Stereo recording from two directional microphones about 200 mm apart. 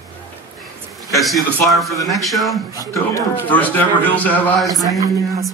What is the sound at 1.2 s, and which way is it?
A man's voice, centre (ahead or behind).